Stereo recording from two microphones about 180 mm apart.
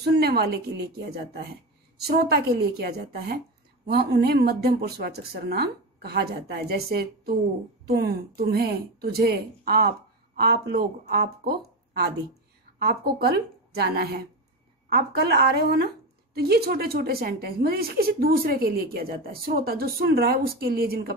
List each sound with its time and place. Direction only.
0.0 s a woman's voice: 65° right (ahead or behind)
2.0 s a woman's voice: 60° right (ahead or behind)
12.7 s a woman's voice: 60° right (ahead or behind)